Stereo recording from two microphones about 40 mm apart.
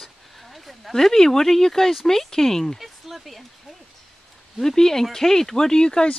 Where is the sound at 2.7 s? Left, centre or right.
Centre.